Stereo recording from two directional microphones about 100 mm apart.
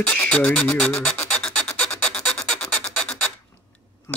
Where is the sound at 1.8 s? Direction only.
10° left (ahead or behind).